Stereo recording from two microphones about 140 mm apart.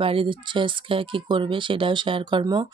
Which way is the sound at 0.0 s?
40° right (ahead or behind).